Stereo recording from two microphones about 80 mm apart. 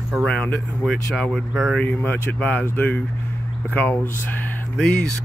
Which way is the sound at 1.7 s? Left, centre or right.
Centre.